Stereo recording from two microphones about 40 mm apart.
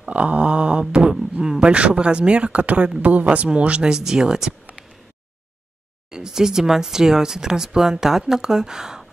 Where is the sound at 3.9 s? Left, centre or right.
Centre.